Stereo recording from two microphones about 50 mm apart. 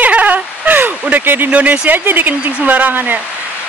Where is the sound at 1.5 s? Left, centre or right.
Right.